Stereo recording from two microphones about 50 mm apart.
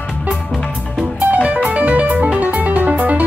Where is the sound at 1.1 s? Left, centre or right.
Right.